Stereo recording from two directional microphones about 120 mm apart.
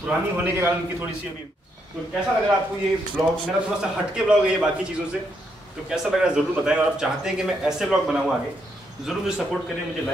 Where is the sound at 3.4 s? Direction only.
5° right (ahead or behind).